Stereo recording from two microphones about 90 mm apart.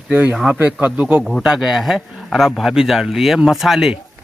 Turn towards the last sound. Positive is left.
turn(degrees=-5)  # may be behind; listen again after turning